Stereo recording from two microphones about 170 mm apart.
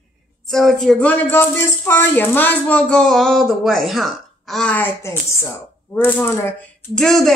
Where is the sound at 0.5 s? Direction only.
Centre (ahead or behind).